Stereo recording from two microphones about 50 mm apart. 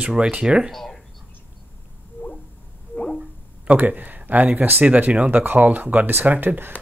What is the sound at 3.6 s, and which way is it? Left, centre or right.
Speech, right.